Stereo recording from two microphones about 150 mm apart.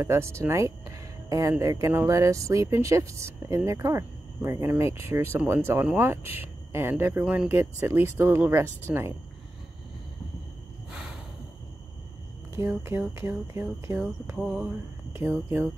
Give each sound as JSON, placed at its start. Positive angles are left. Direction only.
{"t": 0.0, "sound": "speech", "side_deg": -20}
{"t": 12.5, "sound": "speech", "side_deg": -15}